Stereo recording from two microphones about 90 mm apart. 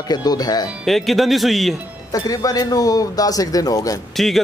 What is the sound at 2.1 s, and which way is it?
Speech, 45° left (ahead or behind).